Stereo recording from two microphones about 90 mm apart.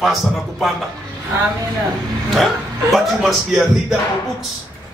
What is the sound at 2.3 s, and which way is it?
A man's voice, centre (ahead or behind).